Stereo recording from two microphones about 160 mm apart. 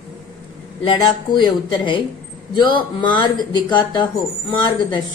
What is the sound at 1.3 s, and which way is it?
A man's voice, 30° left (ahead or behind).